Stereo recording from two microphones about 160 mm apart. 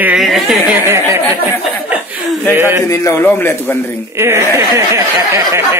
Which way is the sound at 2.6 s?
15° right (ahead or behind).